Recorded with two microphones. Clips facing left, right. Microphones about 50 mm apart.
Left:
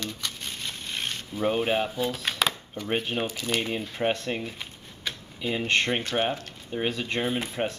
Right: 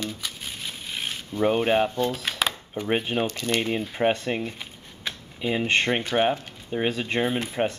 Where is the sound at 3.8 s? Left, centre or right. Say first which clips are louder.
Right 4 dB; centre.